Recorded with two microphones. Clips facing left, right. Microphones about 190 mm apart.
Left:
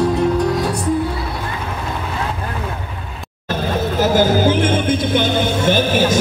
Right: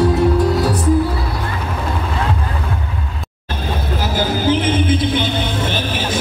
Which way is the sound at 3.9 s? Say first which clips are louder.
Left 6 dB; 50° left (ahead or behind).